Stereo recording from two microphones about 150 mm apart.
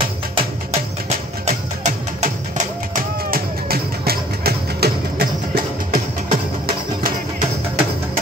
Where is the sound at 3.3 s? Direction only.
90° right.